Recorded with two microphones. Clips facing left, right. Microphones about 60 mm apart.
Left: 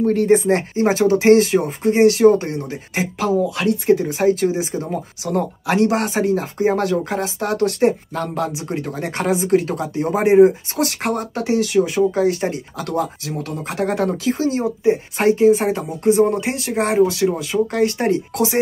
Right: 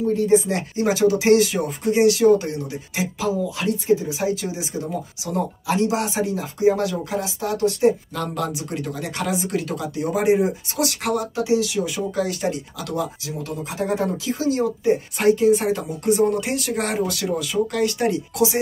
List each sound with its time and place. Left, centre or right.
0.0 s speech: left
3.0 s speech: left
8.1 s speech: left
13.7 s speech: left
14.4 s speech: left